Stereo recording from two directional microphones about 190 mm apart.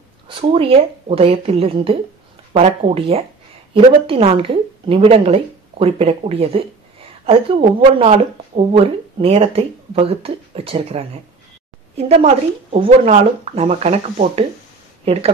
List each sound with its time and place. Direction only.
0.3 s speech: 30° right (ahead or behind)
12.1 s speech: 35° right (ahead or behind)